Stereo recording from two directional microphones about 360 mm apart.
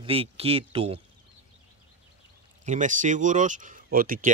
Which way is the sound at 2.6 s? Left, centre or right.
Centre.